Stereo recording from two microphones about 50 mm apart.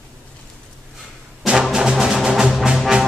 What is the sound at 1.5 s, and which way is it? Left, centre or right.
Music, centre.